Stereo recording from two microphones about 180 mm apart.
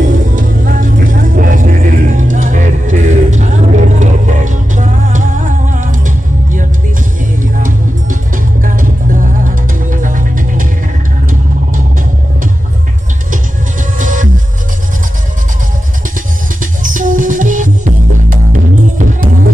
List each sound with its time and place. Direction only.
0.4 s music: 50° right (ahead or behind)
13.9 s music: 45° right (ahead or behind)
16.8 s music: 45° right (ahead or behind)